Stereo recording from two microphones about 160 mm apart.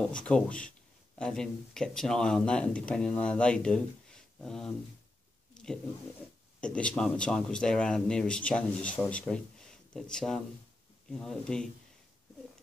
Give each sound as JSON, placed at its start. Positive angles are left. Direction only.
{"t": 0.1, "sound": "speech", "side_deg": 5}
{"t": 5.5, "sound": "a sound", "side_deg": 5}
{"t": 6.6, "sound": "speech", "side_deg": 5}